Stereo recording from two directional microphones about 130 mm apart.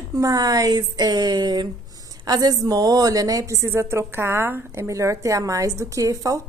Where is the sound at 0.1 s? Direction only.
30° right (ahead or behind).